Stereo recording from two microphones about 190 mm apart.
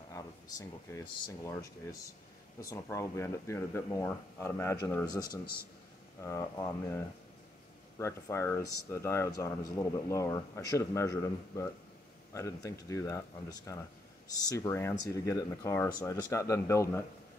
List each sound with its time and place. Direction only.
0.1 s speech: 20° left (ahead or behind)
5.4 s a man's voice: 55° left (ahead or behind)
6.2 s speech: 15° left (ahead or behind)
8.0 s speech: 15° left (ahead or behind)